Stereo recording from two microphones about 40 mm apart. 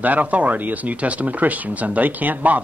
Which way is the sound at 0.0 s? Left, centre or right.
Right.